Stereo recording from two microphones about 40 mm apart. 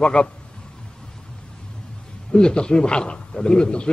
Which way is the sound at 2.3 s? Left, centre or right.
Left.